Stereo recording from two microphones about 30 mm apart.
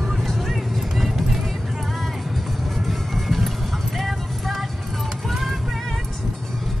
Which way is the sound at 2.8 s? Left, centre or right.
Centre.